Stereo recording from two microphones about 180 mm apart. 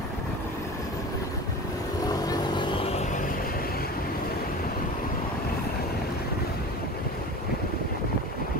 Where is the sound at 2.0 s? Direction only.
20° left (ahead or behind).